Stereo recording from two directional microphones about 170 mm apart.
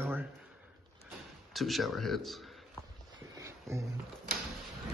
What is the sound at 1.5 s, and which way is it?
Speech, centre (ahead or behind).